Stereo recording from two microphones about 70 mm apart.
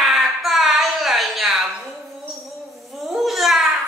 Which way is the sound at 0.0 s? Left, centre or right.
Centre.